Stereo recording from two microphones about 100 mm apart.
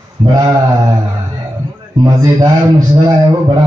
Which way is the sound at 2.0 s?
40° right (ahead or behind).